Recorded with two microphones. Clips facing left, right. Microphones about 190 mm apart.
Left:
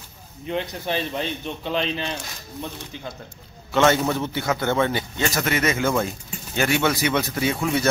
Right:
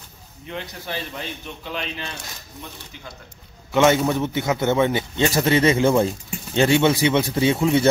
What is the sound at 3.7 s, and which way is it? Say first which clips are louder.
Speech: right 2 dB; 15° right (ahead or behind).